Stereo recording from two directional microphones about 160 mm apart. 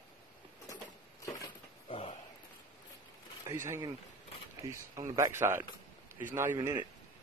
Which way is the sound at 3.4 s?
15° right (ahead or behind).